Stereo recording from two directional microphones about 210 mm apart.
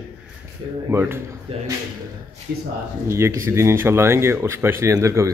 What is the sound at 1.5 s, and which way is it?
Speech, 25° right (ahead or behind).